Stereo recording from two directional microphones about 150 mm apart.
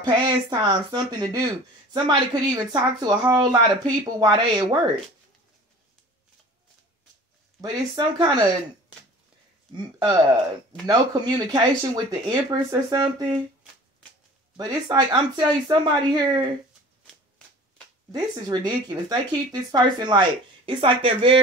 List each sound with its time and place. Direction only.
0.0 s speech: 30° right (ahead or behind)
7.6 s speech: 30° right (ahead or behind)
10.9 s speech: 25° right (ahead or behind)
14.6 s speech: 30° right (ahead or behind)
18.1 s speech: 30° right (ahead or behind)